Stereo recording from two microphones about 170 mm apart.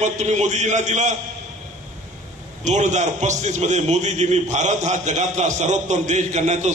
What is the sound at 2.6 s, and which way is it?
A man's voice, 45° right (ahead or behind).